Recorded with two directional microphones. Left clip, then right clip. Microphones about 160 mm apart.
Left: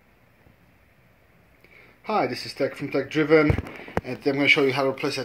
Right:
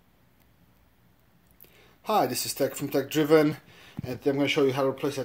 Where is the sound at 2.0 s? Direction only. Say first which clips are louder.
Even; 35° right (ahead or behind).